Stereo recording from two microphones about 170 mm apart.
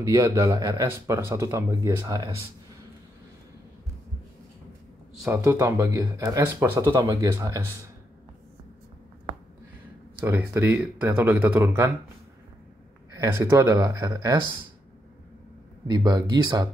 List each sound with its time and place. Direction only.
0.0 s speech: 20° right (ahead or behind)
5.2 s speech: 15° right (ahead or behind)
10.2 s speech: 10° right (ahead or behind)
13.1 s speech: 20° right (ahead or behind)
15.9 s speech: 25° right (ahead or behind)